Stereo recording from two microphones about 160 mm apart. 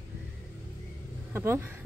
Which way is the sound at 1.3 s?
15° right (ahead or behind).